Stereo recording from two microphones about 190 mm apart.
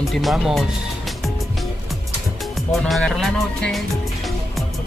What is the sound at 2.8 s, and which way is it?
Speech, centre (ahead or behind).